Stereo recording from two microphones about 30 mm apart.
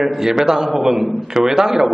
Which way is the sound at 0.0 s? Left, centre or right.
Centre.